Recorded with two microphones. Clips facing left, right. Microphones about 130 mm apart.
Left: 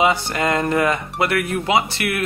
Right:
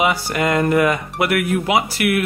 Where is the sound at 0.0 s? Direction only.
25° left (ahead or behind).